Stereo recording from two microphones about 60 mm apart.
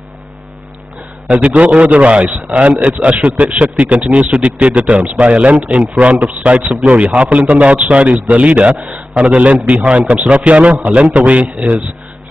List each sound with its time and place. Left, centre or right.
1.3 s a man's voice: right